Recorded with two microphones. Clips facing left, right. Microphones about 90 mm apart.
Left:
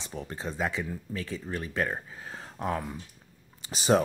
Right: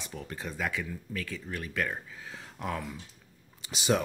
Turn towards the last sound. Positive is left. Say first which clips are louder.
# left 4 dB
turn(degrees=40)  # may be behind; listen again after turning